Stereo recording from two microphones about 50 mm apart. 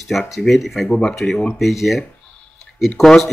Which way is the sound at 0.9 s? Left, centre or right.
Centre.